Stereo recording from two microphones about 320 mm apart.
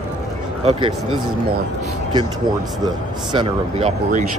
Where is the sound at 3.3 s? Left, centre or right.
Centre.